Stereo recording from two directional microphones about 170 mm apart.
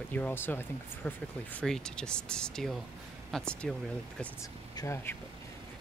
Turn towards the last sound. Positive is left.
turn(degrees=15)  # may be behind; listen again after turning